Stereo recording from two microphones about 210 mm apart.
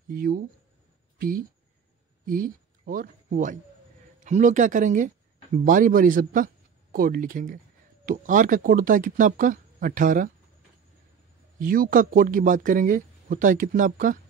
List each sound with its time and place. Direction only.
0.1 s speech: 45° right (ahead or behind)
1.1 s a sound: 45° right (ahead or behind)
2.2 s speech: 40° right (ahead or behind)
11.6 s speech: 40° right (ahead or behind)